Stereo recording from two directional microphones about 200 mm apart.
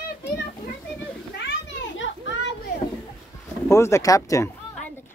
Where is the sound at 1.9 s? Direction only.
70° left (ahead or behind).